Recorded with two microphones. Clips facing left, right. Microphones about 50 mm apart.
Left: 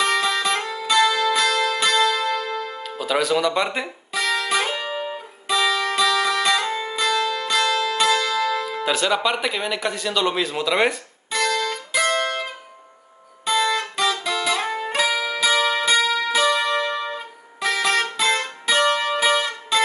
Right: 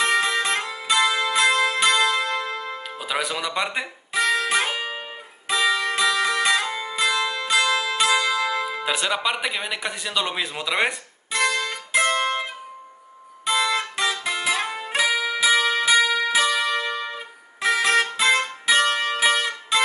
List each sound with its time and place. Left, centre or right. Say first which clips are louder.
0.0 s music: even; centre
2.8 s speech: left 6 dB; centre
4.1 s music: right 1 dB; right
9.0 s speech: left 4 dB; centre
10.9 s guitar: left 2 dB; centre
13.5 s music: left 2 dB; centre
13.7 s music: left 2 dB; right
14.5 s music: left 2 dB; centre
17.6 s music: right 1 dB; right
18.9 s music: left 2 dB; centre